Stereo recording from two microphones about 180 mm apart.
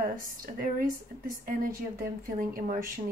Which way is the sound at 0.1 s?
50° right (ahead or behind).